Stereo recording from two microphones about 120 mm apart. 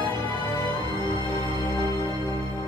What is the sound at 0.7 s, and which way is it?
Music, 40° left (ahead or behind).